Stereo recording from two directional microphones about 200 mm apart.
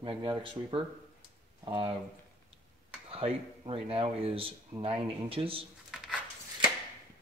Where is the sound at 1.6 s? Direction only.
25° right (ahead or behind).